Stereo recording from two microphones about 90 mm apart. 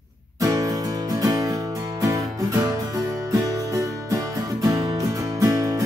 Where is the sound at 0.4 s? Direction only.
40° right (ahead or behind).